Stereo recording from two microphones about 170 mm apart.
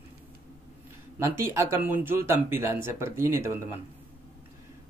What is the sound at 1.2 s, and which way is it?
Speech, 15° right (ahead or behind).